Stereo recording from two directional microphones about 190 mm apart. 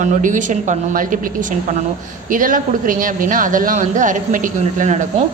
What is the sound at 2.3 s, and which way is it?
A woman's voice, 45° right (ahead or behind).